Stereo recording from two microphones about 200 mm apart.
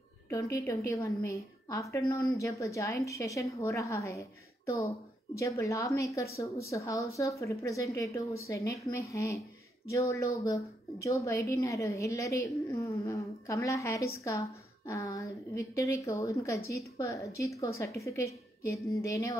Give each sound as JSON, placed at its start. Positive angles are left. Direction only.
{"t": 0.3, "sound": "a woman's voice", "side_deg": 15}